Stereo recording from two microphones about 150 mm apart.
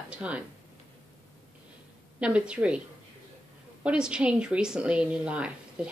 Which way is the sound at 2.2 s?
10° right (ahead or behind).